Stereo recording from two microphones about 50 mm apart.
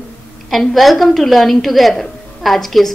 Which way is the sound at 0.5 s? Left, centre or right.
Centre.